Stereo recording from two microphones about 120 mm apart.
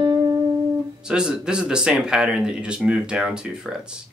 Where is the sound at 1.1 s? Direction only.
5° right (ahead or behind).